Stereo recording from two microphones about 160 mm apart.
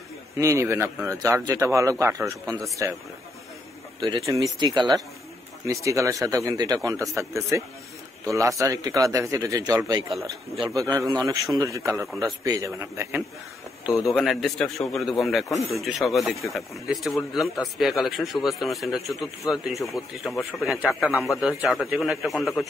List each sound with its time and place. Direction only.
0.4 s a man's voice: 20° right (ahead or behind)
4.0 s speech: 20° right (ahead or behind)
14.0 s speech: centre (ahead or behind)